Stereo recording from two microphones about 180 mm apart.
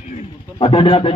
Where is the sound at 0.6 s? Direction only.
30° left (ahead or behind).